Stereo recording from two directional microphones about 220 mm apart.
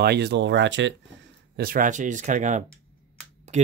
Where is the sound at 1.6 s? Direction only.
40° right (ahead or behind).